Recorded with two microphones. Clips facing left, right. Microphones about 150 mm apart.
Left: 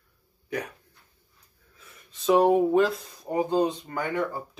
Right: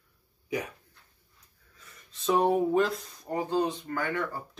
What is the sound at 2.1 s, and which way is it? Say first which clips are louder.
Speech: left 5 dB; centre (ahead or behind).